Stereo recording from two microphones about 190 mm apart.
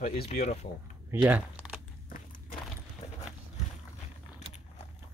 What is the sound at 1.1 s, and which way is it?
Speech, 10° right (ahead or behind).